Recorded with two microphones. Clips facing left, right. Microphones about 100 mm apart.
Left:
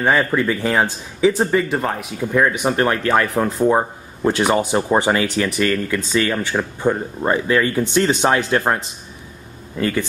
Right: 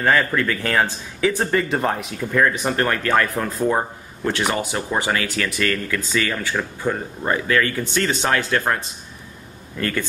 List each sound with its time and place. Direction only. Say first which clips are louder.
0.0 s speech: left 2 dB; 20° left (ahead or behind)
1.4 s speech: left 2 dB; 5° left (ahead or behind)
2.1 s speech: left 4 dB; 15° left (ahead or behind)
3.3 s speech: left 4 dB; 25° left (ahead or behind)